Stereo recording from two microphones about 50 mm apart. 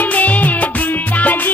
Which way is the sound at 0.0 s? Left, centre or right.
Left.